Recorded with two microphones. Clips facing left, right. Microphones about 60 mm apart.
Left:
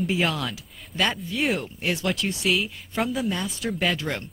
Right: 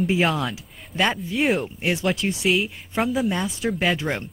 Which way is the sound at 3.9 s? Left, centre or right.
Centre.